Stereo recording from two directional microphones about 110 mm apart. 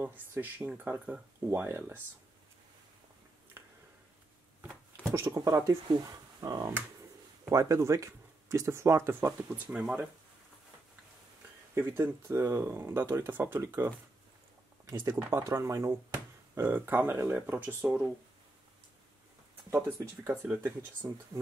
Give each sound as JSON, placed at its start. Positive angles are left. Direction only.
{"t": 0.0, "sound": "speech", "side_deg": -15}
{"t": 5.1, "sound": "speech", "side_deg": -30}
{"t": 11.7, "sound": "speech", "side_deg": -20}
{"t": 20.2, "sound": "speech", "side_deg": -20}